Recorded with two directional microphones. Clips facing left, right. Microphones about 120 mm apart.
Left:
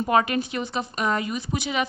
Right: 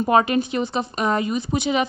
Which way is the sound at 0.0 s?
25° right (ahead or behind).